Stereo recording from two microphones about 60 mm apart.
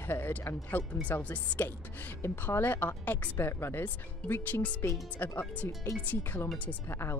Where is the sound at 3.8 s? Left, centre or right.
Left.